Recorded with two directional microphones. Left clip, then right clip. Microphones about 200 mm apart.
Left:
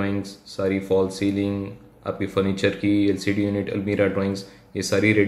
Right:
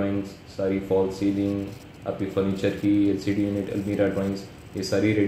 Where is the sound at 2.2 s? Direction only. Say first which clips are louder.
Left 3 dB; 15° left (ahead or behind).